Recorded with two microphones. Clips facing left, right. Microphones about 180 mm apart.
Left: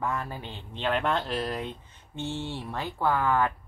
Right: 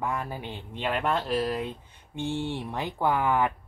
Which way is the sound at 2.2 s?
15° right (ahead or behind).